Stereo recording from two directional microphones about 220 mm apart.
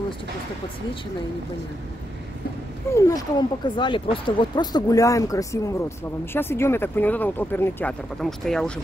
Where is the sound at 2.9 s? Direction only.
15° left (ahead or behind).